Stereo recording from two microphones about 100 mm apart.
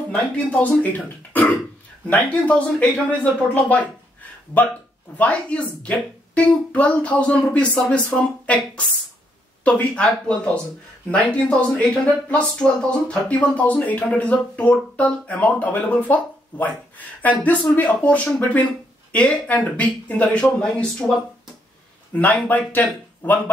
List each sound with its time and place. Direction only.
0.1 s speech: 15° left (ahead or behind)
5.1 s speech: 15° left (ahead or behind)
22.1 s speech: 15° left (ahead or behind)